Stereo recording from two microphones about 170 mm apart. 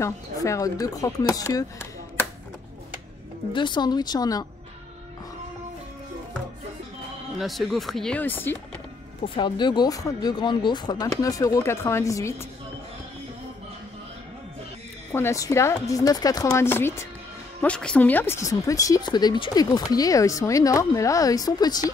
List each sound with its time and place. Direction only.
0.0 s speech: 20° left (ahead or behind)
3.5 s speech: 25° left (ahead or behind)
7.3 s speech: centre (ahead or behind)
9.4 s speech: 25° left (ahead or behind)
15.1 s speech: 15° left (ahead or behind)